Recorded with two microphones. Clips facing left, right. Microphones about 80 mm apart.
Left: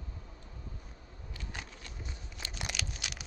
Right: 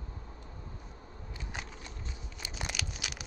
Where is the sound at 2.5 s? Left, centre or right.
Centre.